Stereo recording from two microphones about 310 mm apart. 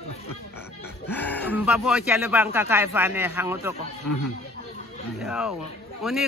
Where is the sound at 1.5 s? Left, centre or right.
Centre.